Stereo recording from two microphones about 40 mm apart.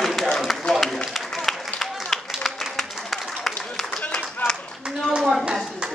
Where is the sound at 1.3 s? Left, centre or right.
Centre.